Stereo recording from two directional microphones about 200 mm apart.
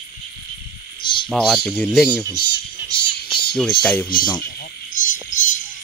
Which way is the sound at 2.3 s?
55° left (ahead or behind).